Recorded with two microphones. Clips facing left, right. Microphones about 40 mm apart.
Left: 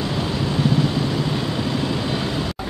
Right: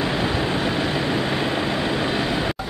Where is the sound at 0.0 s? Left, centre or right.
Right.